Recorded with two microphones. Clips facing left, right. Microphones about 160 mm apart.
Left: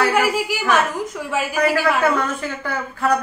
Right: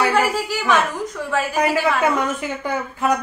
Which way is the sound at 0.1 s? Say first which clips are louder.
Even; 10° left (ahead or behind).